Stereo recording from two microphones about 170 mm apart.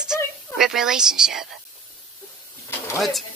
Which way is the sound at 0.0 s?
5° right (ahead or behind).